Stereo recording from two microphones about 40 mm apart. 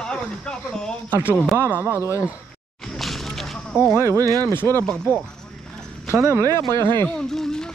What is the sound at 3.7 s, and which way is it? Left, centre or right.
Speech, left.